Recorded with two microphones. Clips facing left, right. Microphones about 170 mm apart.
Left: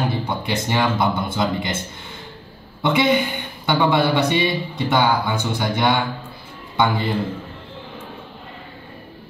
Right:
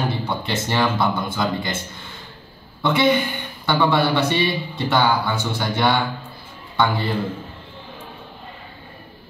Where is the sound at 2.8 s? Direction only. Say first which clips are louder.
Even; 20° left (ahead or behind).